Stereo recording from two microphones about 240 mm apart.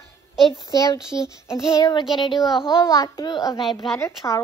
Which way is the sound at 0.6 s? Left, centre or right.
Centre.